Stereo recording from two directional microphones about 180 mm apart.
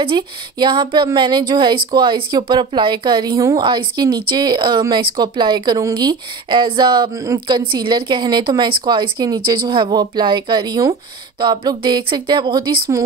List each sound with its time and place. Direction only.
0.0 s speech: 25° right (ahead or behind)